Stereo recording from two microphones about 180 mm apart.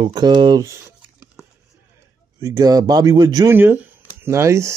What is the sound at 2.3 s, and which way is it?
Speech, 20° right (ahead or behind).